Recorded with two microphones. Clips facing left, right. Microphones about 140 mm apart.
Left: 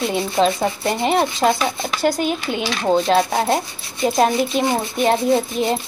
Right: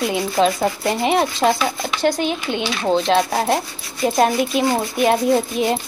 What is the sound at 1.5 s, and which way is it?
Speech, 20° left (ahead or behind).